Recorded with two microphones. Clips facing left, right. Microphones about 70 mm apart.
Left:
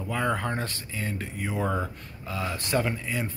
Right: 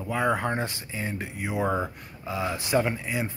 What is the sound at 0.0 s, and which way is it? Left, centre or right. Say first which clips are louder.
Speech: right 2 dB; centre.